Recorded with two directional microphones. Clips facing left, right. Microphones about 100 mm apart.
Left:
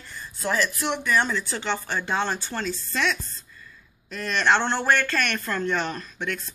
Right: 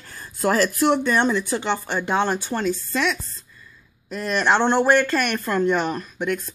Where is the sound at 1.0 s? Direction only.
20° right (ahead or behind).